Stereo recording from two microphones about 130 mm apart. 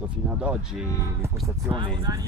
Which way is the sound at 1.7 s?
35° right (ahead or behind).